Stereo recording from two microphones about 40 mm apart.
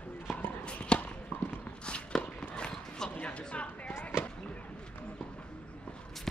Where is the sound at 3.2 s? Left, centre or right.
Left.